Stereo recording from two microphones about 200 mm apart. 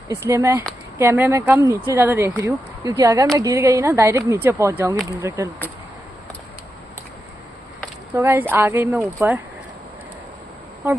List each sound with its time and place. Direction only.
0.1 s speech: 15° right (ahead or behind)
8.1 s speech: 10° right (ahead or behind)